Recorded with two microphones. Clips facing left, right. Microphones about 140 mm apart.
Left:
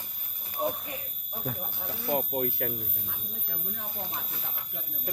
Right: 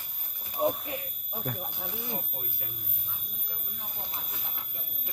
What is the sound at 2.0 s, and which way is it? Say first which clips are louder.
Speech: left 11 dB; 90° left.